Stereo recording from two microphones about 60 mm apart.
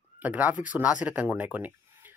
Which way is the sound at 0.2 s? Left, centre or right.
Right.